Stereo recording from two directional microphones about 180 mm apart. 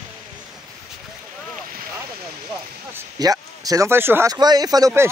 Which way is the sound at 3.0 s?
20° right (ahead or behind).